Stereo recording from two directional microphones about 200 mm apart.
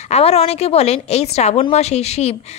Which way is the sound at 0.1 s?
30° left (ahead or behind).